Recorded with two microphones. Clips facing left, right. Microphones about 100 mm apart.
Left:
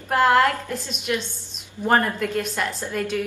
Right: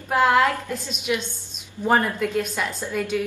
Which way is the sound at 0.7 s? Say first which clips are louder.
Right 1 dB; centre (ahead or behind).